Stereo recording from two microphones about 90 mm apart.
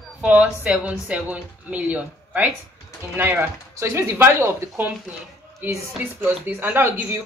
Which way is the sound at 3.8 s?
25° right (ahead or behind).